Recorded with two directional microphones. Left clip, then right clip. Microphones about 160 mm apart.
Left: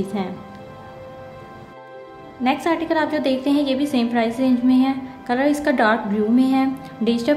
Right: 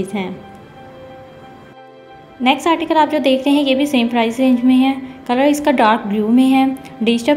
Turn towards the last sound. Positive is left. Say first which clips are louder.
# right 4 dB
turn(degrees=-15)  # may be behind; listen again after turning